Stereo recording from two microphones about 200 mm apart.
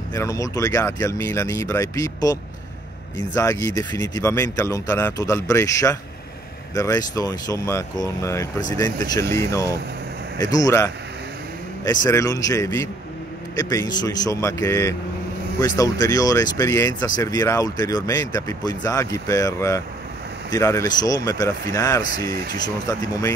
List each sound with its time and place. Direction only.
0.1 s speech: 15° left (ahead or behind)
3.3 s speech: 15° left (ahead or behind)
22.2 s speech: 50° right (ahead or behind)
22.8 s speech: 15° left (ahead or behind)